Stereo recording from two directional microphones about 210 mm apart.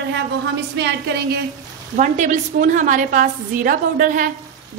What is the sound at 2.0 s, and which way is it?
A woman's voice, 35° right (ahead or behind).